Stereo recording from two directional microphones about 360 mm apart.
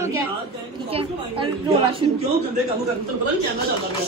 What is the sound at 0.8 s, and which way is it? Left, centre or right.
A woman's voice, centre.